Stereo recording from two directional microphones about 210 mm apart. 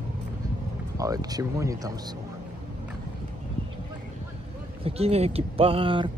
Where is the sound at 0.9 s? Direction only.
15° right (ahead or behind).